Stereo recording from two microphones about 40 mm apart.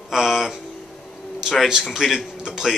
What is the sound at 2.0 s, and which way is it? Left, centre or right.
Speech, centre.